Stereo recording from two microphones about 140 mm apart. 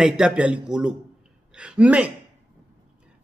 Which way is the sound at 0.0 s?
5° right (ahead or behind).